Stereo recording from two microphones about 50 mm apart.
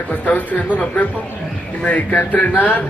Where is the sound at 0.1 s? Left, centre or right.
Left.